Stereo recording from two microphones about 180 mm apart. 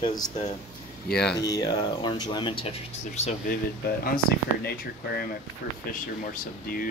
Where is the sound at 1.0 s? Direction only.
5° left (ahead or behind).